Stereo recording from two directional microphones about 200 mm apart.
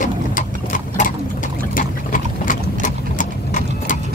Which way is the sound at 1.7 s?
45° left (ahead or behind).